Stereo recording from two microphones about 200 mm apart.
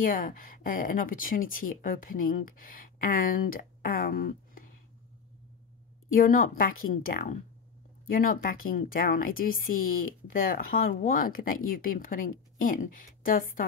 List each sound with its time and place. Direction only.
0.0 s speech: 45° left (ahead or behind)
6.1 s speech: 45° left (ahead or behind)